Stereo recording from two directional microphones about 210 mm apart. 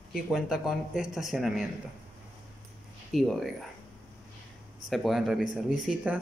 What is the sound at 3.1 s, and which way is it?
Speech, centre (ahead or behind).